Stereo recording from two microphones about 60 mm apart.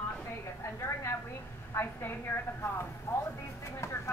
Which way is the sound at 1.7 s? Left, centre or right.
Left.